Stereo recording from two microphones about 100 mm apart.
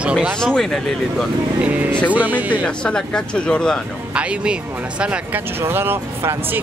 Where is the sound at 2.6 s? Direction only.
10° left (ahead or behind).